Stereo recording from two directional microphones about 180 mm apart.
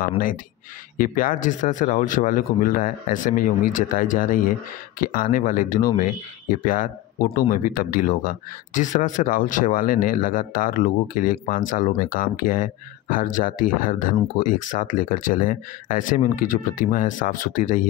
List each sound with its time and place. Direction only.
0.9 s speech: 50° left (ahead or behind)